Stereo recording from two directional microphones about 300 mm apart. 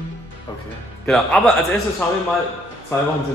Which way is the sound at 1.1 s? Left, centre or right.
Centre.